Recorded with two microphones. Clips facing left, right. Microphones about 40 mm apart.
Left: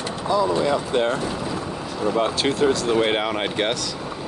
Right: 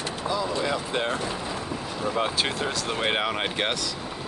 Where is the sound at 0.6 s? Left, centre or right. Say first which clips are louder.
Left 6 dB; centre.